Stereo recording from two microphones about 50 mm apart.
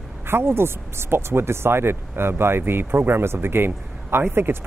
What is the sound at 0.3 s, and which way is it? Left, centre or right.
Speech, right.